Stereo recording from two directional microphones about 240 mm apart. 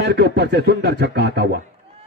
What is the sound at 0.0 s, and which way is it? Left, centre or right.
A man's voice, right.